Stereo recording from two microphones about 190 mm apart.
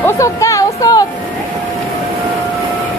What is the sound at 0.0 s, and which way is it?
Music, 15° left (ahead or behind).